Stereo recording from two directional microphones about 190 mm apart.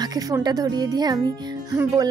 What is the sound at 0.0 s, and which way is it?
A woman's voice, 20° right (ahead or behind).